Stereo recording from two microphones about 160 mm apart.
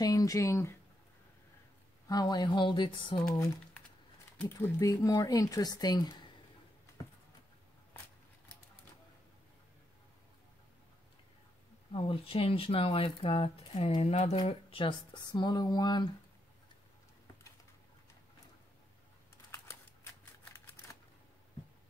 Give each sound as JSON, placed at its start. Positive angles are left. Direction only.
{"t": 0.0, "sound": "speech", "side_deg": 20}
{"t": 2.0, "sound": "speech", "side_deg": 25}
{"t": 4.4, "sound": "speech", "side_deg": 15}
{"t": 11.9, "sound": "speech", "side_deg": 35}
{"t": 19.5, "sound": "a sound", "side_deg": 15}
{"t": 20.5, "sound": "typewriter", "side_deg": 20}